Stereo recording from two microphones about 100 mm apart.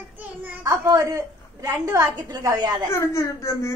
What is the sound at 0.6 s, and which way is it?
A woman's voice, 30° right (ahead or behind).